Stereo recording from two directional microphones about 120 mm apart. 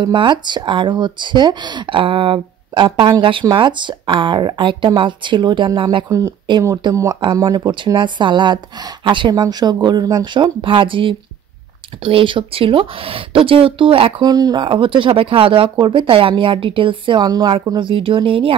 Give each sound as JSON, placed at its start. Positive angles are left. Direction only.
{"t": 0.0, "sound": "speech", "side_deg": -40}
{"t": 6.0, "sound": "speech", "side_deg": -25}
{"t": 14.2, "sound": "speech", "side_deg": -35}